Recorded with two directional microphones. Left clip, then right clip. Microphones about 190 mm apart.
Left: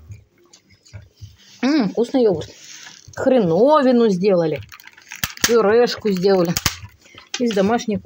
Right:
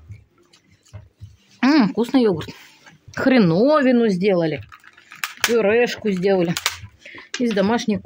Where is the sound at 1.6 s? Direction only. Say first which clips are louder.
Right 1 dB; 25° right (ahead or behind).